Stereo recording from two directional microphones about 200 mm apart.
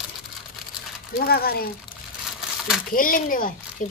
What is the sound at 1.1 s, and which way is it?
Speech, 50° left (ahead or behind).